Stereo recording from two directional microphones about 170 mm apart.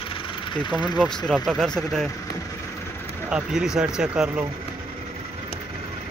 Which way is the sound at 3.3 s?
5° right (ahead or behind).